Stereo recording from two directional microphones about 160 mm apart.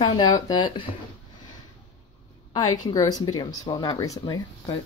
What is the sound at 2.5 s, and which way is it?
Speech, 25° left (ahead or behind).